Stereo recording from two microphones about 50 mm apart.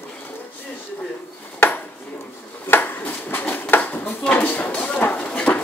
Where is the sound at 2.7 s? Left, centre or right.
Left.